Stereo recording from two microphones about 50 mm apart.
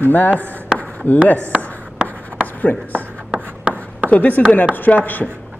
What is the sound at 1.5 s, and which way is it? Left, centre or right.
Writing, right.